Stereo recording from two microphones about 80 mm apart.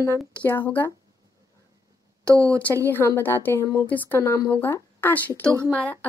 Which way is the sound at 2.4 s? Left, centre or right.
Centre.